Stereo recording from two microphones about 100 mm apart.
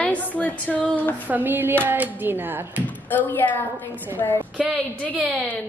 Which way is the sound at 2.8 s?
15° left (ahead or behind).